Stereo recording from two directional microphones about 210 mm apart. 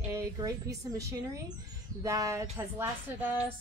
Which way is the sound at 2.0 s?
15° right (ahead or behind).